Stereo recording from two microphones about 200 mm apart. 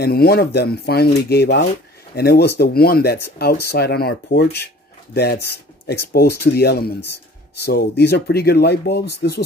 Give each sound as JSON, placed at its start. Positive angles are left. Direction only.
{"t": 0.0, "sound": "speech", "side_deg": 50}